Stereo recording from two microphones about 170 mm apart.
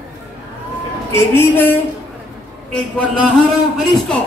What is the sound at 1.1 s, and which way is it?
Speech, 15° left (ahead or behind).